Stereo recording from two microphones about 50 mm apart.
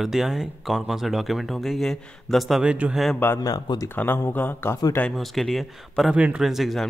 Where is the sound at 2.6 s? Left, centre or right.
Right.